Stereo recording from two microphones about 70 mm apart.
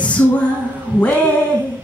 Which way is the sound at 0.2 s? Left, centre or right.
Left.